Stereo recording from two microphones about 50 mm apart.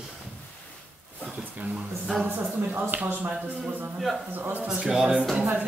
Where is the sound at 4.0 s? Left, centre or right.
Centre.